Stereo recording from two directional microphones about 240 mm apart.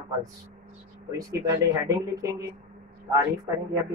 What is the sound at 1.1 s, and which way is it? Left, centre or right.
Speech, centre.